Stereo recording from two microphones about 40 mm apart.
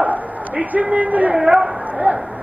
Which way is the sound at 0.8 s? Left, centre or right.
Right.